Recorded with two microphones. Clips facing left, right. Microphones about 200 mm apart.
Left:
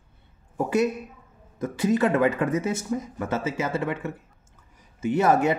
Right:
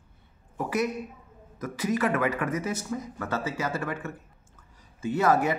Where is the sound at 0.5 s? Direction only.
25° left (ahead or behind).